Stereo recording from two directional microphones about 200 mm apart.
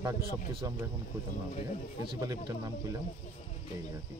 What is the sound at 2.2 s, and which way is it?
Speech, 15° right (ahead or behind).